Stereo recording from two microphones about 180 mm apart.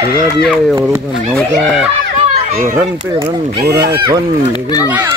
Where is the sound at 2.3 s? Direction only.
35° right (ahead or behind).